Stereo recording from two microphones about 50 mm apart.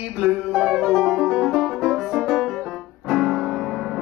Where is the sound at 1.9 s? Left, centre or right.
Centre.